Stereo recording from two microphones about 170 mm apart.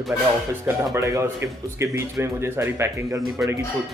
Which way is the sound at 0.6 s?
15° right (ahead or behind).